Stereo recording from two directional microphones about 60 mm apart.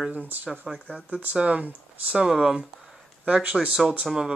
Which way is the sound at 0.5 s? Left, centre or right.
Centre.